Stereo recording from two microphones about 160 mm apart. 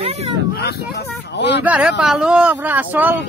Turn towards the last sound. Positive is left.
turn(degrees=-10)  # may be behind; listen again after turning